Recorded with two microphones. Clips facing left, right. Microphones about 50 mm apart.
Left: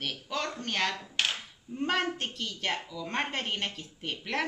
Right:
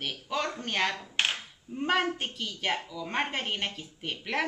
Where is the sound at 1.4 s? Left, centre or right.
Centre.